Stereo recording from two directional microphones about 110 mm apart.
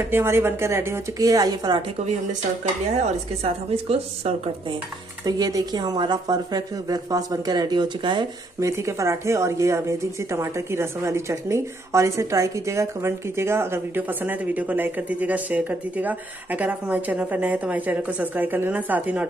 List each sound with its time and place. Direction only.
0.1 s a woman's voice: 25° right (ahead or behind); by 1.8 s 40° right (ahead or behind)
3.0 s a woman's voice: 65° right (ahead or behind)
5.2 s speech: 35° right (ahead or behind)
8.5 s a woman's voice: 25° right (ahead or behind)